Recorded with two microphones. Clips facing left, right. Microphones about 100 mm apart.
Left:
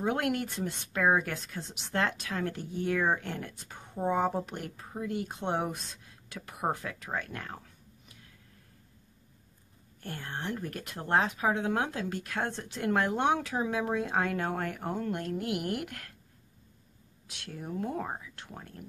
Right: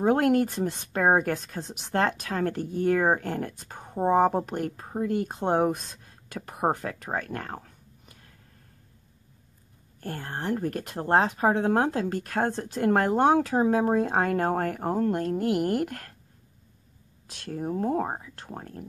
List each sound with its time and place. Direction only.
0.0 s speech: 40° right (ahead or behind)
9.9 s speech: 40° right (ahead or behind)
17.3 s speech: 40° right (ahead or behind)